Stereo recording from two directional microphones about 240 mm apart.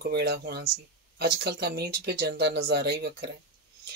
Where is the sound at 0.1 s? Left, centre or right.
Right.